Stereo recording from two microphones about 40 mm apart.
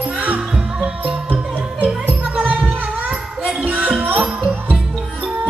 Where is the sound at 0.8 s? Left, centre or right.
Right.